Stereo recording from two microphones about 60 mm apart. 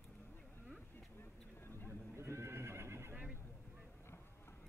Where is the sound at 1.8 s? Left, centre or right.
Right.